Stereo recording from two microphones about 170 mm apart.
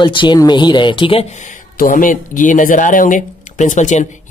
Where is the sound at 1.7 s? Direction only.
55° left (ahead or behind).